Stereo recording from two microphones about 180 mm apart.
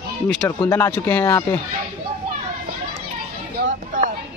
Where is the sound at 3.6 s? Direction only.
55° right (ahead or behind).